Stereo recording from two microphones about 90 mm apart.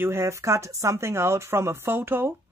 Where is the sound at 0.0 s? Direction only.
30° right (ahead or behind).